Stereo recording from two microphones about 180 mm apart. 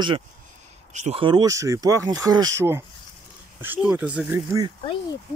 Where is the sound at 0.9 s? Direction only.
40° right (ahead or behind).